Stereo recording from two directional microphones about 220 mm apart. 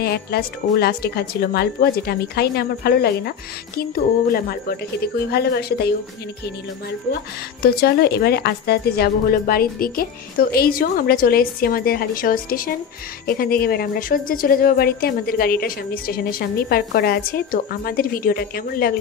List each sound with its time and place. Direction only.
0.0 s a woman's voice: 45° left (ahead or behind)
7.6 s a woman's voice: 45° left (ahead or behind)